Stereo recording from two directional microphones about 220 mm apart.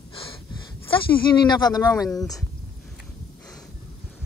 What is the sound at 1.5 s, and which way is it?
Speech, 20° left (ahead or behind).